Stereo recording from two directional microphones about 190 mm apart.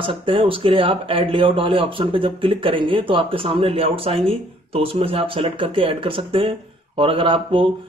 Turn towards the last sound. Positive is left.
turn(degrees=-25)  # may be behind; listen again after turning